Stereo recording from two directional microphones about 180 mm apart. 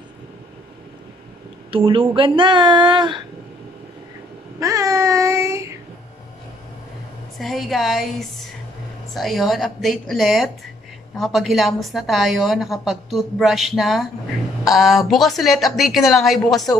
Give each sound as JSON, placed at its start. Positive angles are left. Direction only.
{"t": 1.7, "sound": "speech", "side_deg": -30}
{"t": 4.6, "sound": "child singing", "side_deg": -15}
{"t": 7.3, "sound": "a woman's voice", "side_deg": 0}